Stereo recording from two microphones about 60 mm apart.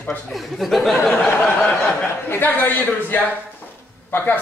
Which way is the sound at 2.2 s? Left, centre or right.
Left.